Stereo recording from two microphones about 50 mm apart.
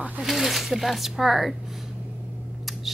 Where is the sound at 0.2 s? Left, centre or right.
Centre.